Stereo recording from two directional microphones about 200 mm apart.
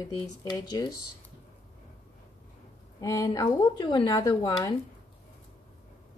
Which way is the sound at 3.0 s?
15° left (ahead or behind).